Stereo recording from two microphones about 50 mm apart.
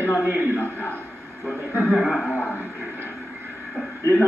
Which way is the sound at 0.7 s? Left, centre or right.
Left.